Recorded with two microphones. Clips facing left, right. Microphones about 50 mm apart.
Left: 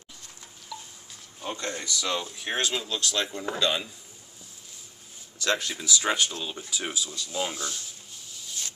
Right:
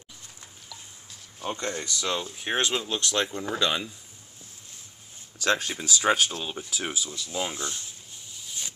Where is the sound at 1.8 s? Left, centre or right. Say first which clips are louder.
Even; right.